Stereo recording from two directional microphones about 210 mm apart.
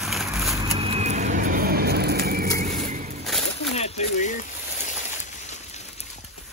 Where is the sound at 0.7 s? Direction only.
30° right (ahead or behind).